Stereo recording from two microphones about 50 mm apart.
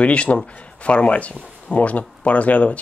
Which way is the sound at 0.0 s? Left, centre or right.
Left.